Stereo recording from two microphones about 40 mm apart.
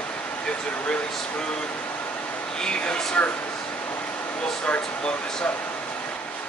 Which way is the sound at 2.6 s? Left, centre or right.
Left.